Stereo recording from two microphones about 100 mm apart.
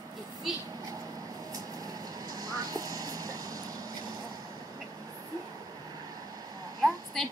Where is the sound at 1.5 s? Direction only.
40° right (ahead or behind).